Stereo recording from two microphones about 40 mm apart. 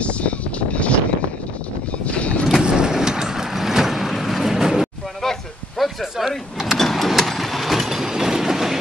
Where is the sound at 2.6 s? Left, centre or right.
Centre.